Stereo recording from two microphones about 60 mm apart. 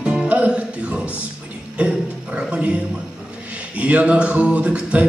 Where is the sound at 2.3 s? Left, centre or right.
Centre.